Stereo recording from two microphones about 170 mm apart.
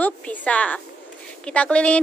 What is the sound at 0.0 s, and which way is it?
A woman's voice, 10° left (ahead or behind).